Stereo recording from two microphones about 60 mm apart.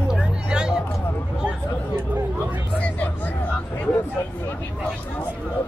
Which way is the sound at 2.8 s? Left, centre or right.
Left.